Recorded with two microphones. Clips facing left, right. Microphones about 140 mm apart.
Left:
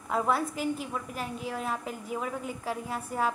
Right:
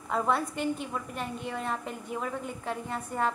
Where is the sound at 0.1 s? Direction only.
5° left (ahead or behind).